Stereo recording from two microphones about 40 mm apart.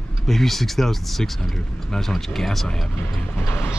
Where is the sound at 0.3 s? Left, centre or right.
Centre.